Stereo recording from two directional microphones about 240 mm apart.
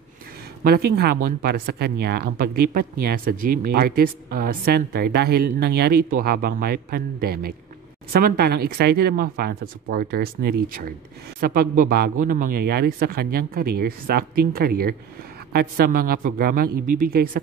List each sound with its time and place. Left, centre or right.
0.7 s speech: right